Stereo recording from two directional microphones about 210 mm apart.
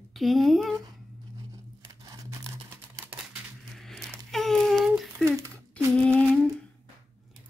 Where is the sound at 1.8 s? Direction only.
20° right (ahead or behind).